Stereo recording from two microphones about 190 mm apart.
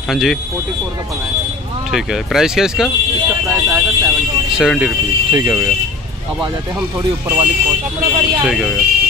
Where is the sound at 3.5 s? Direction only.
15° right (ahead or behind).